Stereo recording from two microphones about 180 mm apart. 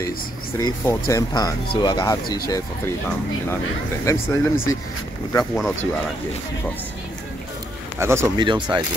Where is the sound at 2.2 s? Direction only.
60° left (ahead or behind).